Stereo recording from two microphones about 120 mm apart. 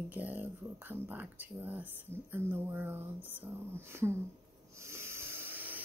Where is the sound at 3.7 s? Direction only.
20° right (ahead or behind).